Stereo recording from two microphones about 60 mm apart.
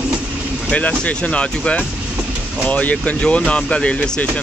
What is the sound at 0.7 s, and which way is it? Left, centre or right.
Speech, left.